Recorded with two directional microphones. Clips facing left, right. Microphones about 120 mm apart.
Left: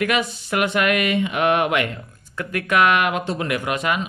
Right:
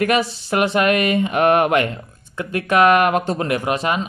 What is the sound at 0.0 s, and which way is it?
Speech, 35° right (ahead or behind).